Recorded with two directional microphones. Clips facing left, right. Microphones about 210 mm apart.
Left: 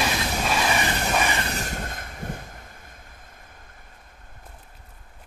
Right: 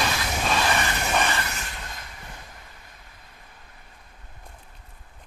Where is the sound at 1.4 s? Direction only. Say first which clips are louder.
Left 5 dB; 35° left (ahead or behind).